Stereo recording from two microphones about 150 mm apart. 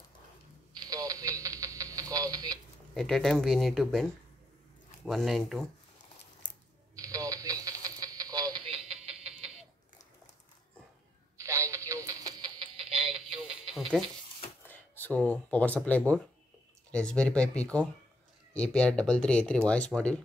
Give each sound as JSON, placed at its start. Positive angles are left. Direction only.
{"t": 0.7, "sound": "radio", "side_deg": -25}
{"t": 2.9, "sound": "speech", "side_deg": 0}
{"t": 7.0, "sound": "radio", "side_deg": -25}
{"t": 8.6, "sound": "a sound", "side_deg": -40}
{"t": 11.3, "sound": "radio", "side_deg": -20}
{"t": 12.3, "sound": "music", "side_deg": -30}
{"t": 13.7, "sound": "a sound", "side_deg": 0}
{"t": 14.6, "sound": "speech", "side_deg": 10}